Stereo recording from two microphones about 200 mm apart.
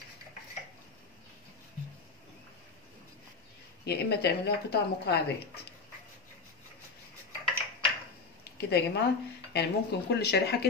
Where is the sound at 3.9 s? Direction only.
55° left (ahead or behind).